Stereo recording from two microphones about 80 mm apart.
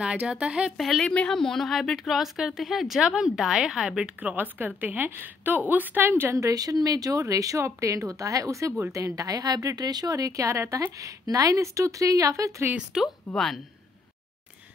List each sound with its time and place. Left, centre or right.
0.0 s speech: centre
0.7 s speech: centre
1.0 s speech: centre
4.0 s a woman's voice: centre
6.3 s speech: right
12.7 s speech: centre